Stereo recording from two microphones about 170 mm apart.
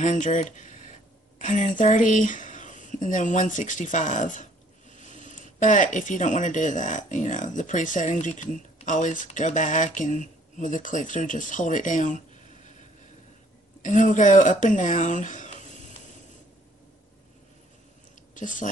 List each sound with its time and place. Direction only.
0.0 s speech: 45° left (ahead or behind)
13.8 s speech: 45° left (ahead or behind)
18.3 s speech: 50° left (ahead or behind)